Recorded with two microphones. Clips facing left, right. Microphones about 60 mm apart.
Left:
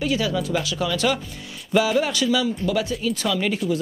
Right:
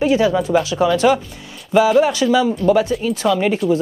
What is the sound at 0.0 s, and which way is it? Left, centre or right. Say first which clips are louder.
Speech: right 8 dB; right.